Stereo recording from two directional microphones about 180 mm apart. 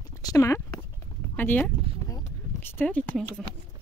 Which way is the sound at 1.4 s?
10° left (ahead or behind).